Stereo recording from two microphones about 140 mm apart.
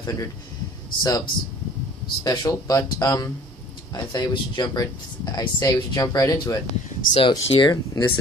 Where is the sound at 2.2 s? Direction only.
25° left (ahead or behind).